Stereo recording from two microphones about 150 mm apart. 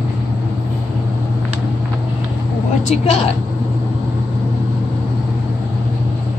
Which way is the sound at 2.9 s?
45° left (ahead or behind).